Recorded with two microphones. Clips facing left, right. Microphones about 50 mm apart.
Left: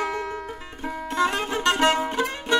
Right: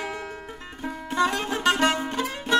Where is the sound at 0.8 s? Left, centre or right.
Centre.